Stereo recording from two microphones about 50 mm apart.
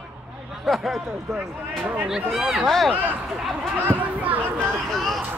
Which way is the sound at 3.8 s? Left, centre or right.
Right.